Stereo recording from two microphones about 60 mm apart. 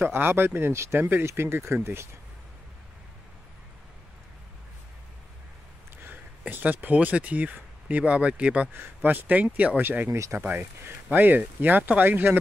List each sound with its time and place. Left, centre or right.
0.0 s speech: right
6.4 s speech: right
10.0 s speech: right
10.5 s speech: right